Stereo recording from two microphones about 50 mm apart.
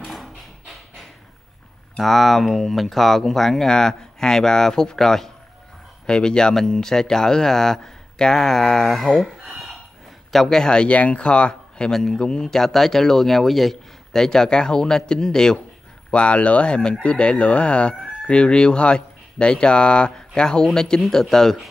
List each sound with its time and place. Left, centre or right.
0.0 s a sound: centre
2.0 s speech: centre
10.3 s speech: centre
11.9 s speech: centre